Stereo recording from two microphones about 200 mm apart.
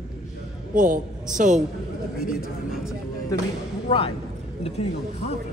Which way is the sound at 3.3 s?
20° left (ahead or behind).